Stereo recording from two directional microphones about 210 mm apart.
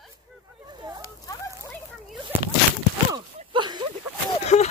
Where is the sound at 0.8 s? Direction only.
20° right (ahead or behind).